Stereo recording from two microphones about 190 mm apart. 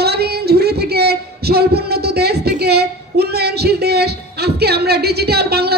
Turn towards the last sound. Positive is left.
turn(degrees=-55)  # may be behind; listen again after turning